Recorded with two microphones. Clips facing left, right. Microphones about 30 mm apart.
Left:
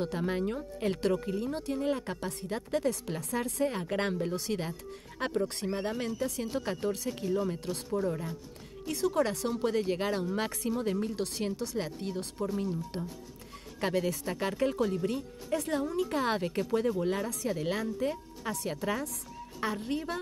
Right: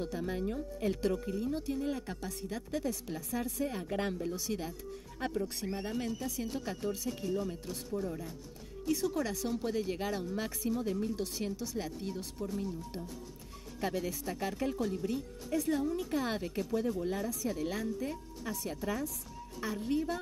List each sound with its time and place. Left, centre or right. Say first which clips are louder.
0.0 s speech: left 4 dB; left
1.2 s speech: left 2 dB; left
12.4 s speech: left 6 dB; left
13.7 s speech: left 5 dB; left
14.2 s speech: left 4 dB; left
15.0 s speech: left 3 dB; left
15.5 s speech: left 1 dB; left
17.6 s speech: left 4 dB; left
19.6 s speech: left 1 dB; left